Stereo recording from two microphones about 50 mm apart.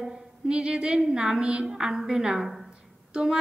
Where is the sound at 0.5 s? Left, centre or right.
Centre.